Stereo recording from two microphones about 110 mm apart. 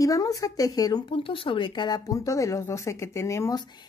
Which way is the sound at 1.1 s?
55° left (ahead or behind).